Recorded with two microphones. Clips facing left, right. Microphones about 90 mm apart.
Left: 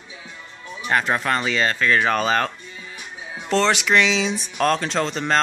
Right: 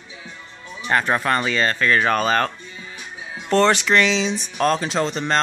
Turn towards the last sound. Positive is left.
turn(degrees=0)  # may be behind; listen again after turning